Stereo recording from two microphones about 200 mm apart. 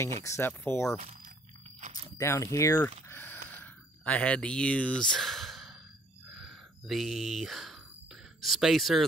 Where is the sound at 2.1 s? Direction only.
15° left (ahead or behind).